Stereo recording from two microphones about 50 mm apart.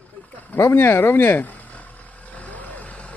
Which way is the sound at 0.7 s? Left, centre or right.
Left.